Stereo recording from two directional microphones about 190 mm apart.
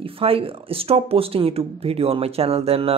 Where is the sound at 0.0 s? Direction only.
30° right (ahead or behind).